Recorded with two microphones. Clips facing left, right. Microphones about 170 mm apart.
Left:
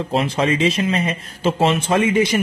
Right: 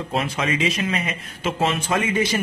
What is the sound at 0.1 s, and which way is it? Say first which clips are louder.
Speech: left 5 dB; 30° left (ahead or behind).